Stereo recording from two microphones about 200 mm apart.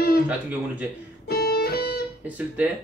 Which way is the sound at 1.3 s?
50° left (ahead or behind).